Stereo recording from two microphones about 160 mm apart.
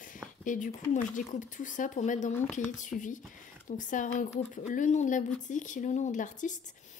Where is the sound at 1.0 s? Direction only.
55° left (ahead or behind).